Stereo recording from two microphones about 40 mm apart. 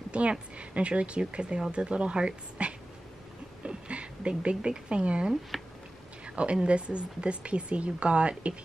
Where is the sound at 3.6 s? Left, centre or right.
Right.